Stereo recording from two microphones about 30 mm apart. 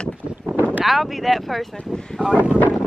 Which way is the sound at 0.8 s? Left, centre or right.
Centre.